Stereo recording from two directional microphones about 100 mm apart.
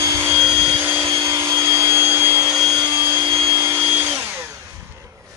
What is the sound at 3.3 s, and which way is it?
Vacuum cleaner, 30° right (ahead or behind).